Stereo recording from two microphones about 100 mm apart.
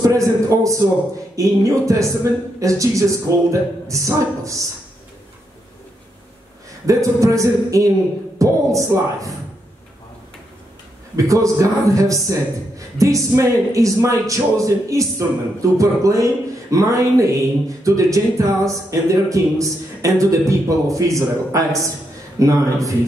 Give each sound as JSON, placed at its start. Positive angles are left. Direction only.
{"t": 0.0, "sound": "speech", "side_deg": -35}
{"t": 6.9, "sound": "speech", "side_deg": -30}
{"t": 11.1, "sound": "speech", "side_deg": -35}